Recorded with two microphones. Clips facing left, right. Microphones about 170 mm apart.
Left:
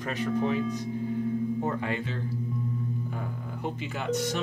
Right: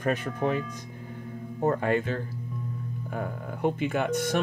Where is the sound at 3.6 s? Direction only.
55° right (ahead or behind).